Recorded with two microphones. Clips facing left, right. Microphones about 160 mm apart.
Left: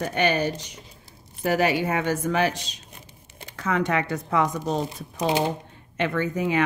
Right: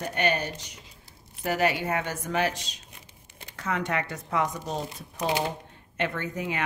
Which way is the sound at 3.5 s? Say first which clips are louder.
Left 5 dB; 90° left.